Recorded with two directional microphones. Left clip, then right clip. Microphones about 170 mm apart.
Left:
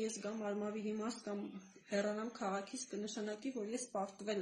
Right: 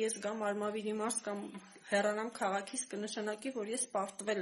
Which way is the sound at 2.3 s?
Centre (ahead or behind).